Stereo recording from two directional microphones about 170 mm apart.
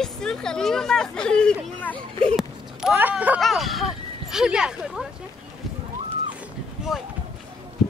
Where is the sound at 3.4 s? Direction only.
Centre (ahead or behind).